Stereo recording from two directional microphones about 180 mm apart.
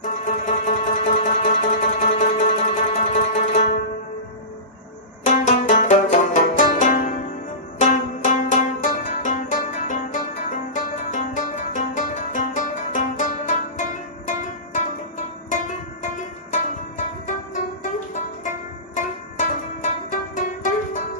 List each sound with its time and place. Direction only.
0.2 s music: 45° left (ahead or behind)
5.2 s music: 45° left (ahead or behind)
16.5 s music: 45° left (ahead or behind)
18.9 s music: 45° left (ahead or behind)